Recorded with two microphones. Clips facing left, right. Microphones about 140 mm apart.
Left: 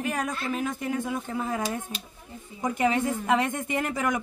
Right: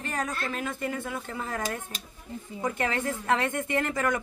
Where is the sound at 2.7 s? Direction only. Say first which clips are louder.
Left 8 dB; 15° left (ahead or behind).